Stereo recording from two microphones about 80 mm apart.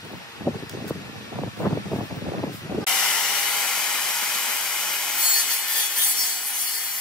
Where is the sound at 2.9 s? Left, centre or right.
Centre.